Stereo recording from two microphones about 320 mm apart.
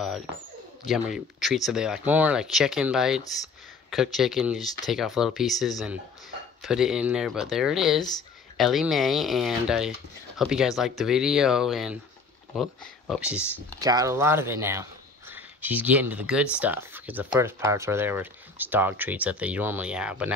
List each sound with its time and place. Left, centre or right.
0.8 s speech: centre